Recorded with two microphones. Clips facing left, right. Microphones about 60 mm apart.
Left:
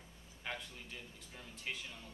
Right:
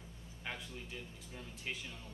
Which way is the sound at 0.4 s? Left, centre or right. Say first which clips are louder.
Left 1 dB; centre.